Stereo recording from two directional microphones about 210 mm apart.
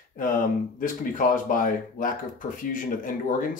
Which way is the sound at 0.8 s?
40° left (ahead or behind).